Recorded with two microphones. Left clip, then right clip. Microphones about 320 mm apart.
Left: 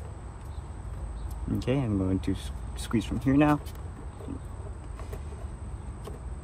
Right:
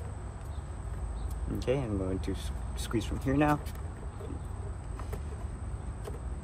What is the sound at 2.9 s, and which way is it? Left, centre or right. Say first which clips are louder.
Speech: left 5 dB; centre.